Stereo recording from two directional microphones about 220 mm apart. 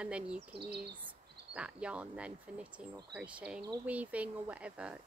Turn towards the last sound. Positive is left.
turn(degrees=-5)  # may be behind; listen again after turning